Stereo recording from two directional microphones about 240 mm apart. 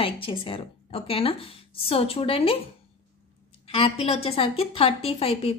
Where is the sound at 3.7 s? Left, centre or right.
Left.